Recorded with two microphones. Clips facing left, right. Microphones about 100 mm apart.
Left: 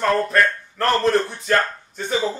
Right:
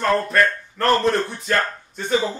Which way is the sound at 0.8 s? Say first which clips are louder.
Right 1 dB; centre (ahead or behind).